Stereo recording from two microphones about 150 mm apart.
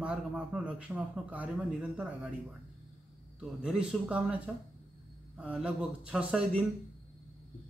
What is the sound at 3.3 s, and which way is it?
Speech, 5° right (ahead or behind).